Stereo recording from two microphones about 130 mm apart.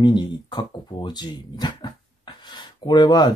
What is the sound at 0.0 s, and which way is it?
Speech, 35° left (ahead or behind).